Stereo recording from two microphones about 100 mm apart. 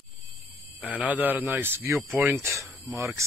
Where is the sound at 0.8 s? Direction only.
15° right (ahead or behind).